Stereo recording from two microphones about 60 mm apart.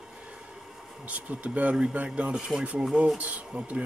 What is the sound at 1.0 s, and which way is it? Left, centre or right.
Speech, right.